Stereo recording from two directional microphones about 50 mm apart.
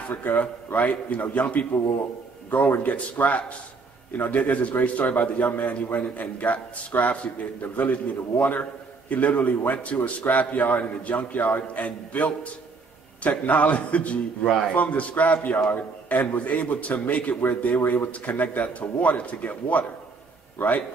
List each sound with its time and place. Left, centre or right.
0.1 s a man's voice: left
2.8 s a man's voice: left